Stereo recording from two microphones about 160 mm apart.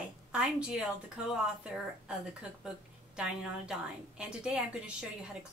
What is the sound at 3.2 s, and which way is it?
A woman's voice, 5° right (ahead or behind).